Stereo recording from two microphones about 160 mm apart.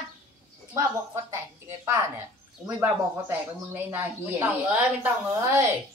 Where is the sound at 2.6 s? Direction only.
15° right (ahead or behind).